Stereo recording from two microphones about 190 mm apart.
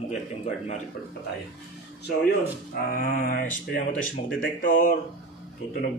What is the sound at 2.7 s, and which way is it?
Mantra, 50° left (ahead or behind).